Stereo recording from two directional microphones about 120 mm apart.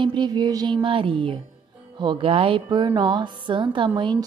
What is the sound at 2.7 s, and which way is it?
A woman's voice, 40° right (ahead or behind).